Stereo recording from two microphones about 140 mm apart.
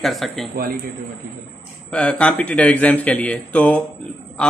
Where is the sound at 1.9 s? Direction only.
10° left (ahead or behind).